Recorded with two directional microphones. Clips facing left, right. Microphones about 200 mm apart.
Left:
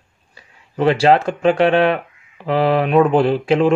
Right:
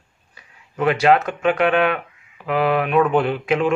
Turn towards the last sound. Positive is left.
turn(degrees=30)  # may be behind; listen again after turning